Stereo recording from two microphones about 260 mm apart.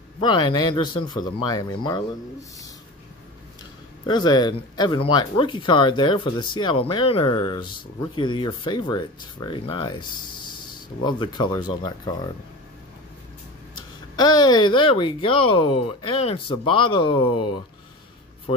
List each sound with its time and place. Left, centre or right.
0.2 s speech: centre
4.0 s speech: centre
11.1 s speech: centre
13.7 s speech: centre